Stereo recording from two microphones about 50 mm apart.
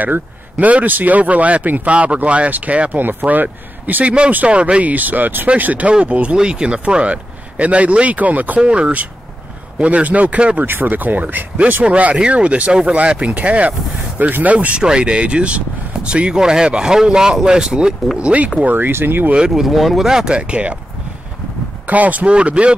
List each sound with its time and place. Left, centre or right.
0.0 s speech: right
3.0 s speech: right
4.0 s speech: right
8.5 s speech: right
10.6 s speech: right
14.8 s speech: centre
18.6 s speech: right
19.5 s speech: centre
20.1 s speech: centre
21.8 s speech: right